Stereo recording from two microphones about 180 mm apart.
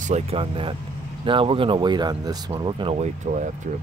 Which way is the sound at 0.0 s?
35° right (ahead or behind).